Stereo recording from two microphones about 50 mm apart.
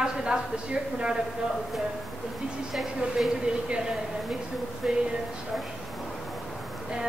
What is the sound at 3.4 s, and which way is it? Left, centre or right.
A woman's voice, centre.